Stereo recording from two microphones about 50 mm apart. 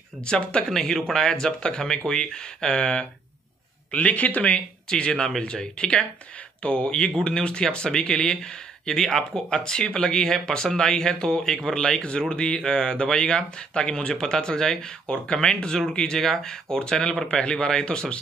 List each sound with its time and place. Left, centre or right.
0.2 s speech: centre
0.7 s speech: centre
3.9 s speech: left